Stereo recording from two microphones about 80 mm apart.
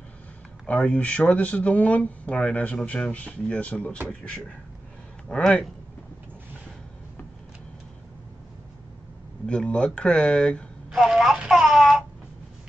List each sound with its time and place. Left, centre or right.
0.7 s speech: centre
5.3 s speech: centre
9.5 s speech: centre
10.9 s a sound: centre